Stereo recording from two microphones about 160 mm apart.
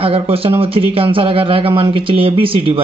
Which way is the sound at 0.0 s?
35° right (ahead or behind).